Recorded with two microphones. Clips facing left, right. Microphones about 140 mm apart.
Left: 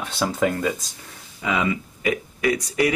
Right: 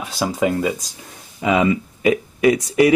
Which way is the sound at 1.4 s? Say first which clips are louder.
Right 7 dB; 25° right (ahead or behind).